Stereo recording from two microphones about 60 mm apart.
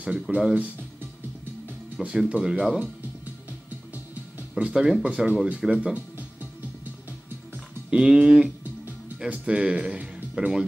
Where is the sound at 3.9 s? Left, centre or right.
Right.